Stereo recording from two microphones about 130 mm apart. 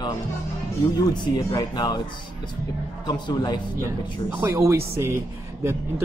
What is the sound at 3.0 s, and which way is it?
Speech, 35° left (ahead or behind).